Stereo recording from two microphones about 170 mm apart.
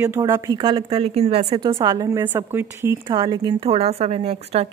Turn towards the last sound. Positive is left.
turn(degrees=-35)  # may be behind; listen again after turning